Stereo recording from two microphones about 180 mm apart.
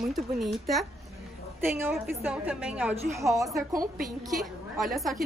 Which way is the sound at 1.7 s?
10° right (ahead or behind).